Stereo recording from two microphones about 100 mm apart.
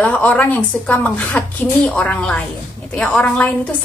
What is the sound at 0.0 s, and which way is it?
A woman's voice, 15° left (ahead or behind).